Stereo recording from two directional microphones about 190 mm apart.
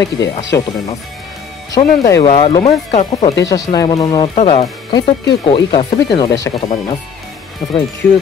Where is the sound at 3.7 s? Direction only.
20° left (ahead or behind).